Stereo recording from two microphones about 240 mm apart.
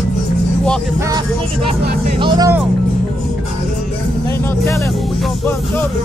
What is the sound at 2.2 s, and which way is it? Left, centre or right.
Speech, centre.